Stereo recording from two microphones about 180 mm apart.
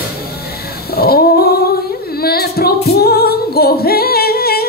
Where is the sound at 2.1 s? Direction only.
60° left (ahead or behind).